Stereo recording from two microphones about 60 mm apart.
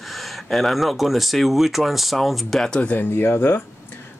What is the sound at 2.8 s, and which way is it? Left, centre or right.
Speech, left.